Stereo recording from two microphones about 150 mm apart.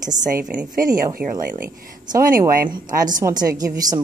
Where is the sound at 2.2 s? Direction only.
70° right (ahead or behind).